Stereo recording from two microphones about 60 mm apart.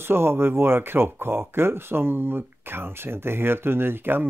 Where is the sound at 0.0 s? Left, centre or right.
Right.